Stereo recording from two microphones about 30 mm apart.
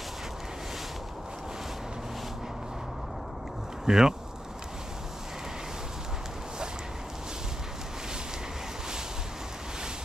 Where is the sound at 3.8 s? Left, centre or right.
Centre.